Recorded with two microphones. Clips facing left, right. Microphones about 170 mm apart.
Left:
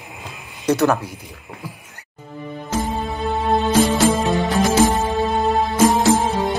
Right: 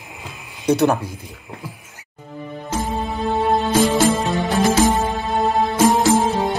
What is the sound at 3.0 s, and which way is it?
Music, centre (ahead or behind).